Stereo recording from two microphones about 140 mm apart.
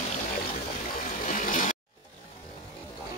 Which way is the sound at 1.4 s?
65° left (ahead or behind).